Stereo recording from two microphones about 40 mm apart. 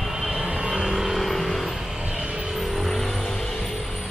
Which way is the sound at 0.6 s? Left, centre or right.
Right.